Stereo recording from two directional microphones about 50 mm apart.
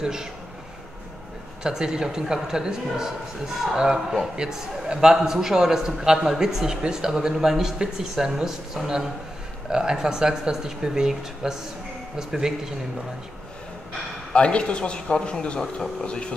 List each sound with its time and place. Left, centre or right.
0.0 s a man's voice: centre
1.6 s a man's voice: centre
14.3 s a man's voice: left